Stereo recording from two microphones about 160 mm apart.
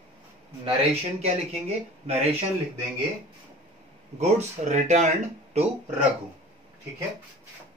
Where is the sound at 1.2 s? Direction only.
40° right (ahead or behind).